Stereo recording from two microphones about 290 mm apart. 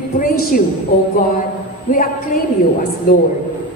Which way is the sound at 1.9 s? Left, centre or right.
Left.